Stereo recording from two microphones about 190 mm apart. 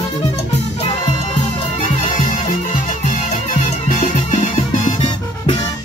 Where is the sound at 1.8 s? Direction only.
35° left (ahead or behind).